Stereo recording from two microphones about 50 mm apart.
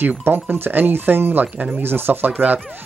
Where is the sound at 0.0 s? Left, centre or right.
Right.